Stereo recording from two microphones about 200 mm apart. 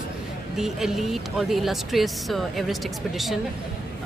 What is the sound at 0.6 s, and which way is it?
Speech, centre (ahead or behind).